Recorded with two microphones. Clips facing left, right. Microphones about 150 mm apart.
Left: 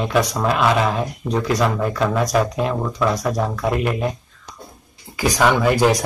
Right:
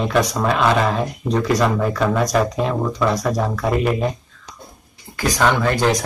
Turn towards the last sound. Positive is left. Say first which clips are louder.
# left 2 dB
turn(degrees=10)  # may be behind; listen again after turning